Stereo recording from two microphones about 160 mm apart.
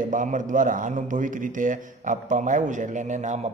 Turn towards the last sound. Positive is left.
turn(degrees=-45)  # may be behind; listen again after turning